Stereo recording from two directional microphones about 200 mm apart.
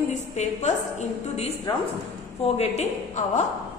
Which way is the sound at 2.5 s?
35° left (ahead or behind).